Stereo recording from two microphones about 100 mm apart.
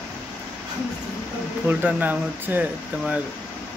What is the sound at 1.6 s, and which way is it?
Speech, 15° right (ahead or behind).